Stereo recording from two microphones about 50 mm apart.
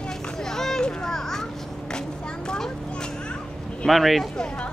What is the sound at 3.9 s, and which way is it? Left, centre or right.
Speech, centre.